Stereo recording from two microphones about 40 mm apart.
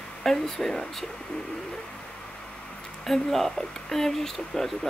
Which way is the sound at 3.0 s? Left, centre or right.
Centre.